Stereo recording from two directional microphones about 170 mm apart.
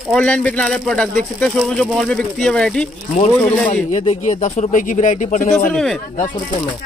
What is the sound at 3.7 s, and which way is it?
Speech, 45° left (ahead or behind).